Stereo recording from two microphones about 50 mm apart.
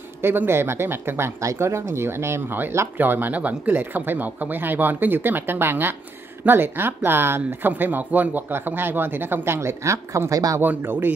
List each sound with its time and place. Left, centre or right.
0.5 s speech: right
1.4 s speech: right
3.0 s speech: right
7.7 s speech: right
10.6 s speech: right